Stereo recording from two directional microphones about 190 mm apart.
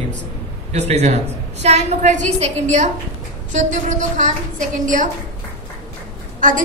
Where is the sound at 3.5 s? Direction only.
40° right (ahead or behind).